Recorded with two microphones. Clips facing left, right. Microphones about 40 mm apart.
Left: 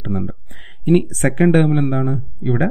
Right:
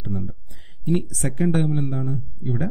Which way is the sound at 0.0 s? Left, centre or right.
Left.